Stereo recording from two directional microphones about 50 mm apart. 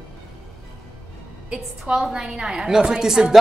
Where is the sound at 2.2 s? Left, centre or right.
Right.